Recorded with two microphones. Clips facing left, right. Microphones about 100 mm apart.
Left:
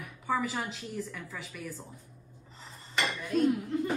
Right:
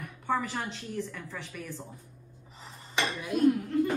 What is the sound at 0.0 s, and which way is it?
A woman's voice, 5° left (ahead or behind).